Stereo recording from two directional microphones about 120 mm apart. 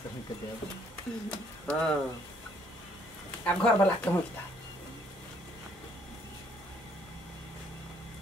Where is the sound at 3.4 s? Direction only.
10° left (ahead or behind).